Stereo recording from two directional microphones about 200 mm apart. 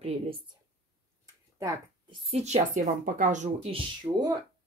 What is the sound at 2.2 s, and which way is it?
Speech, 35° right (ahead or behind).